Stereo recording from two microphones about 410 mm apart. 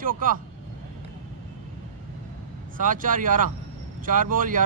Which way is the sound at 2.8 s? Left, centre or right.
Centre.